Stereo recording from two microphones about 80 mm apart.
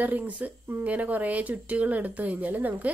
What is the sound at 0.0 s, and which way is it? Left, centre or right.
Speech, right.